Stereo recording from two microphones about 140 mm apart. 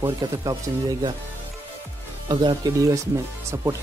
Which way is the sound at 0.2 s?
25° right (ahead or behind).